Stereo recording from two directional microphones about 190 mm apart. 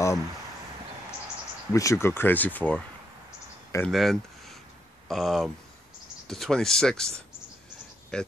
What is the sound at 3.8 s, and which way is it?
Speech, centre (ahead or behind).